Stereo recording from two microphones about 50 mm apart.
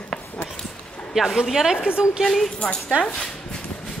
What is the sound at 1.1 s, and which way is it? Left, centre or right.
Speech, centre.